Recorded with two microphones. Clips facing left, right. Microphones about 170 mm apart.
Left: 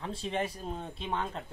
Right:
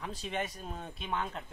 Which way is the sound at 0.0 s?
30° left (ahead or behind).